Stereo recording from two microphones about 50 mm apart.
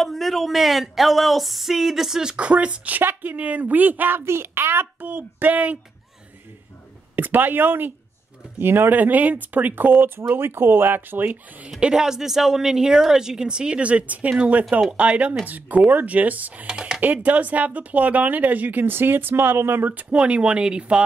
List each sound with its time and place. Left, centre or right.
0.0 s speech: centre
2.3 s speech: right
3.0 s speech: right
4.2 s a child's voice: right
5.0 s speech: right
7.2 s speech: right
8.9 s speech: right
11.8 s speech: centre; by 16.6 s right
16.6 s speech: centre
17.0 s speech: right
19.9 s speech: right